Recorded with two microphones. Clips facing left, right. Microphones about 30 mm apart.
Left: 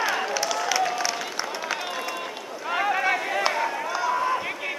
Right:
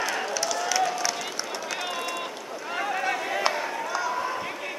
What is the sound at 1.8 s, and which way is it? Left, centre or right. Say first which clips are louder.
Run: even; centre.